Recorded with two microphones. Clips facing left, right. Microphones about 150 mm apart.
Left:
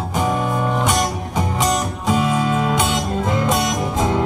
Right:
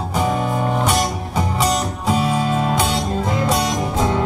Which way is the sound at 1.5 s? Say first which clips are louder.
Even; 35° right (ahead or behind).